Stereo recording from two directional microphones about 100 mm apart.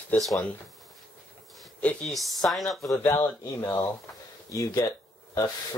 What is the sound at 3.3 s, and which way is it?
Speech, 25° left (ahead or behind).